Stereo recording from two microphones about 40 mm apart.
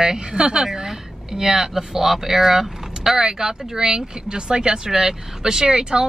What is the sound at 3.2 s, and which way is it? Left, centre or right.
Speech, centre.